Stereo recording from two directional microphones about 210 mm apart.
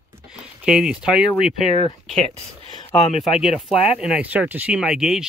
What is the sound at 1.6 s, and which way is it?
Speech, 30° left (ahead or behind).